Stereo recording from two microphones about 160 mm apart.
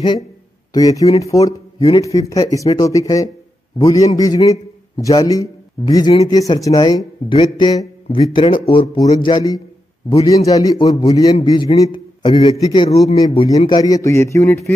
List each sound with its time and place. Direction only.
0.7 s a man's voice: 20° left (ahead or behind); by 12.5 s 35° left (ahead or behind)
12.5 s a man's voice: 25° left (ahead or behind)